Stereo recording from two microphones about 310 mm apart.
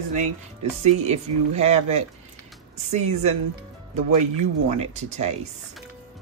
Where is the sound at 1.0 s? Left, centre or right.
Right.